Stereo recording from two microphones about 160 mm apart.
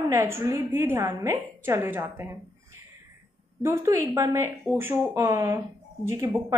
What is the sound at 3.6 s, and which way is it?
Speech, 15° right (ahead or behind).